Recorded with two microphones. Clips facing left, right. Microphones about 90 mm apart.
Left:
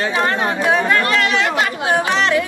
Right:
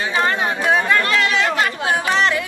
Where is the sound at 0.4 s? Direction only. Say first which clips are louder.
Left 1 dB; centre (ahead or behind).